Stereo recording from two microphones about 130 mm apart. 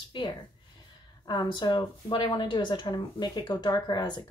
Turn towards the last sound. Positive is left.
turn(degrees=35)  # may be behind; listen again after turning